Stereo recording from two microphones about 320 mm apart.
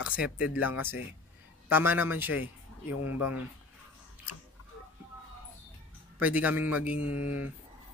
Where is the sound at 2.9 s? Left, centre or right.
Left.